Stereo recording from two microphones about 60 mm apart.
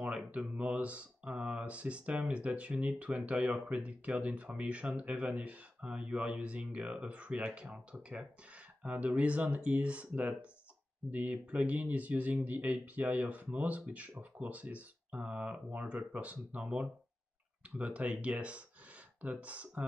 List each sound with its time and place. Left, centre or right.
0.0 s speech: right
3.3 s speech: centre
8.8 s speech: right